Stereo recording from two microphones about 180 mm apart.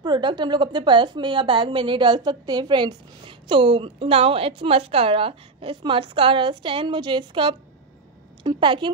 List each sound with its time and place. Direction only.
0.0 s a woman's voice: 25° right (ahead or behind)